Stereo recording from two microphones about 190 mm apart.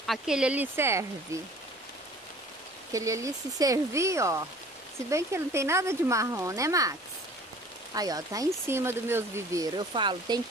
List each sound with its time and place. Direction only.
0.0 s speech: centre (ahead or behind)
2.9 s speech: 15° right (ahead or behind)